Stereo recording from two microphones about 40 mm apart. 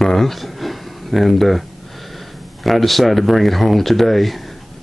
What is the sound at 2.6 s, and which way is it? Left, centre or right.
Speech, centre.